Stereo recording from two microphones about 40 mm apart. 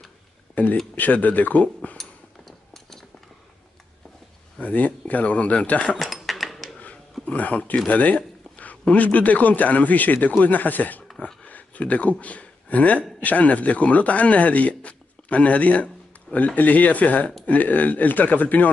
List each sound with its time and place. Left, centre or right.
0.9 s speech: left
2.0 s a sound: centre
4.6 s speech: left
5.9 s dishes: centre
7.2 s a man's voice: left
14.7 s music: left
16.3 s speech: left